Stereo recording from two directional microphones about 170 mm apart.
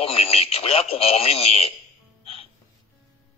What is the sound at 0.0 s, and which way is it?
Speech, 35° left (ahead or behind).